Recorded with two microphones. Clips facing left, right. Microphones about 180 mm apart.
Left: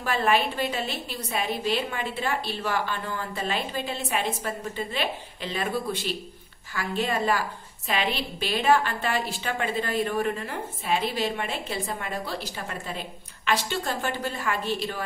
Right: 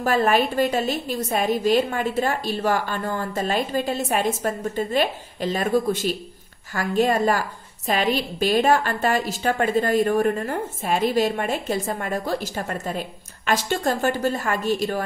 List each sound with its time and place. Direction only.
0.0 s a woman's voice: 45° right (ahead or behind)